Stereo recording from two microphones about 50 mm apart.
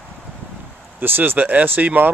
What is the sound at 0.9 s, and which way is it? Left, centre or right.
Speech, right.